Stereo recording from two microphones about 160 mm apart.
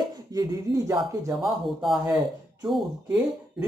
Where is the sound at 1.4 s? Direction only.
Centre (ahead or behind).